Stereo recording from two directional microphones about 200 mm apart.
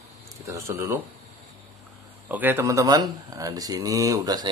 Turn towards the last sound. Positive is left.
turn(degrees=-20)  # may be behind; listen again after turning